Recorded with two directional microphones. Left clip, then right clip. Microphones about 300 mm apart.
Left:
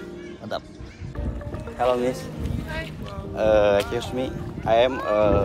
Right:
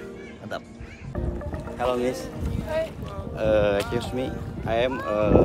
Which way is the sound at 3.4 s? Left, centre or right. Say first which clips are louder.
Left 3 dB; centre.